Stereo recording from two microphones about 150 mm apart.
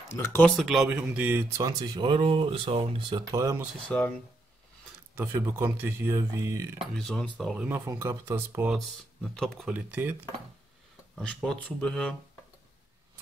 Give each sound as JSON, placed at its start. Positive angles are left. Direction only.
{"t": 0.2, "sound": "speech", "side_deg": 15}
{"t": 0.6, "sound": "speech", "side_deg": 0}
{"t": 3.9, "sound": "speech", "side_deg": 10}
{"t": 5.3, "sound": "speech", "side_deg": -15}
{"t": 7.0, "sound": "speech", "side_deg": 0}
{"t": 7.6, "sound": "speech", "side_deg": -15}
{"t": 8.6, "sound": "speech", "side_deg": 0}
{"t": 9.8, "sound": "speech", "side_deg": -10}
{"t": 11.1, "sound": "speech", "side_deg": 5}